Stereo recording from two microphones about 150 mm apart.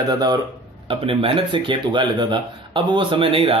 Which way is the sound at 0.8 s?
40° right (ahead or behind).